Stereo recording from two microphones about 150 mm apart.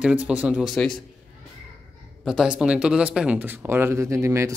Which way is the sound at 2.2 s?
5° right (ahead or behind).